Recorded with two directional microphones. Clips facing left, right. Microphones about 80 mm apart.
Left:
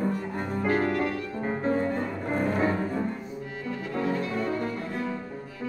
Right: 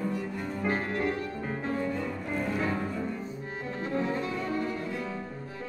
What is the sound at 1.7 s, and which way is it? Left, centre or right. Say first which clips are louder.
Cello: left 4 dB; left.